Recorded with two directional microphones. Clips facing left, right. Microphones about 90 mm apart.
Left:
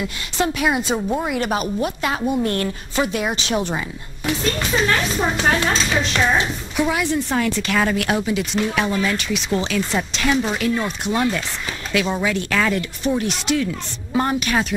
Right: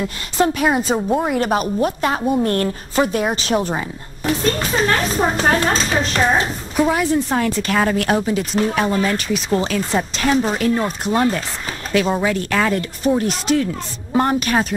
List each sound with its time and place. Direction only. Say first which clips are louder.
0.0 s a woman's voice: right 4 dB; 40° right (ahead or behind)
1.0 s a woman's voice: right 4 dB; 25° right (ahead or behind)
1.3 s a woman's voice: right 3 dB; 40° right (ahead or behind)